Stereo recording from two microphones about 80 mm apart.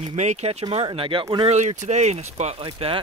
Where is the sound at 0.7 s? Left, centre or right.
Right.